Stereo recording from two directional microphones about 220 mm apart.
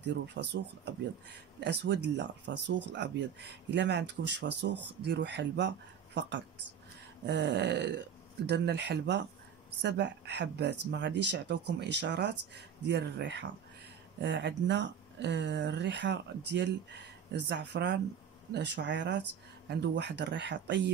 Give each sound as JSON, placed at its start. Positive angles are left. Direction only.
{"t": 0.0, "sound": "speech", "side_deg": -50}